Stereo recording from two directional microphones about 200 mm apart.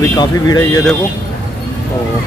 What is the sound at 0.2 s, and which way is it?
Speech, 20° left (ahead or behind).